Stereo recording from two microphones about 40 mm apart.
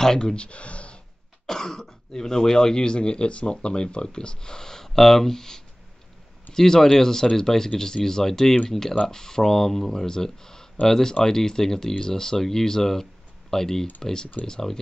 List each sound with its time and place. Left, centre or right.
0.0 s speech: centre
1.4 s speech: centre